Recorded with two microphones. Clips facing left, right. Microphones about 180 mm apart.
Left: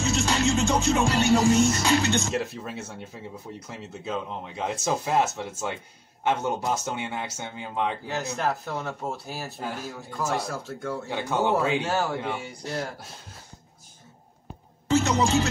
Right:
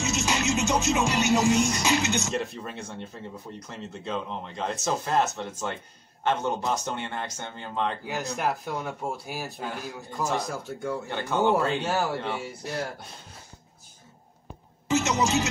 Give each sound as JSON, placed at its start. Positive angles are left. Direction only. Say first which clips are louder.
{"t": 0.0, "sound": "music", "louder": "left 3 dB", "side_deg": -15}
{"t": 2.3, "sound": "speech", "louder": "left 1 dB", "side_deg": 5}
{"t": 8.1, "sound": "music", "louder": "left 1 dB", "side_deg": -10}
{"t": 11.1, "sound": "speech", "louder": "right 1 dB", "side_deg": 10}
{"t": 14.9, "sound": "speech", "louder": "left 2 dB", "side_deg": -20}